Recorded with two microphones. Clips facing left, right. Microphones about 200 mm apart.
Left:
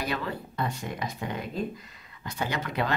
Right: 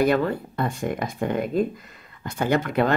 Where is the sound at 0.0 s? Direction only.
50° right (ahead or behind).